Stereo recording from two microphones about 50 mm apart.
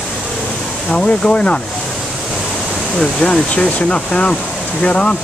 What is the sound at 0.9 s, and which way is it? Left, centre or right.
Speech, left.